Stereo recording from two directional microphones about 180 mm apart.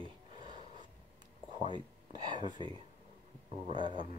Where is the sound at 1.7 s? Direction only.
25° right (ahead or behind).